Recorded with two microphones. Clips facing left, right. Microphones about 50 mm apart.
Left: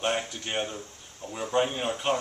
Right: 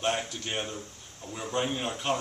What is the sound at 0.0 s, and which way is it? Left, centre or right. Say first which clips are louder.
Speech: left 1 dB; centre.